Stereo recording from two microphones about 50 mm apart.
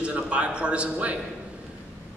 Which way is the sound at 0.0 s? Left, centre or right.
Right.